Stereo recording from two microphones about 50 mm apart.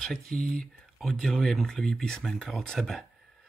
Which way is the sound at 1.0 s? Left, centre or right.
Centre.